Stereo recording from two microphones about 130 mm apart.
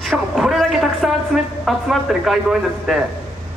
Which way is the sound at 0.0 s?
Centre (ahead or behind).